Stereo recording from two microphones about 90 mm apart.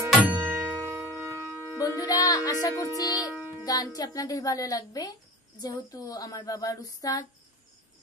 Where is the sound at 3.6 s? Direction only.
45° left (ahead or behind).